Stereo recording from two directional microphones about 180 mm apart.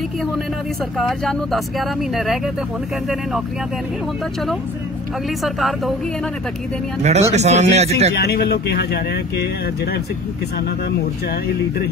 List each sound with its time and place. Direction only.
0.9 s speech: centre (ahead or behind)
5.4 s speech: centre (ahead or behind)
7.0 s speech: 40° right (ahead or behind)
8.2 s speech: 60° left (ahead or behind)